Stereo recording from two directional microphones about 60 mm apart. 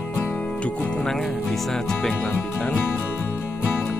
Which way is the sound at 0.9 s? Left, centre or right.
Centre.